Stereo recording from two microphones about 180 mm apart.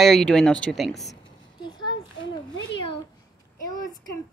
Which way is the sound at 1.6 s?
25° left (ahead or behind).